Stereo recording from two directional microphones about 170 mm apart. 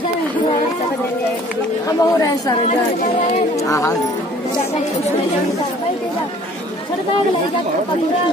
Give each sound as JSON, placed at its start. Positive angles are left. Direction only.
{"t": 1.9, "sound": "speech", "side_deg": 20}
{"t": 3.6, "sound": "speech", "side_deg": 20}